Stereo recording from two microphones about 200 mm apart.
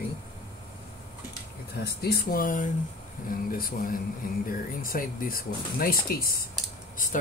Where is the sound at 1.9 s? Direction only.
50° left (ahead or behind).